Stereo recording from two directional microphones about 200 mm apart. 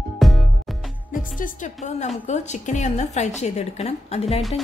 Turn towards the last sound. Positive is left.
turn(degrees=30)  # may be behind; listen again after turning